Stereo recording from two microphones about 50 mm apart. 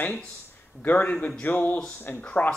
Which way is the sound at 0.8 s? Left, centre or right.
Left.